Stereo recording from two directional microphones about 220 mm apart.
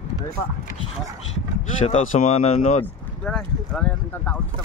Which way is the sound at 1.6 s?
30° left (ahead or behind).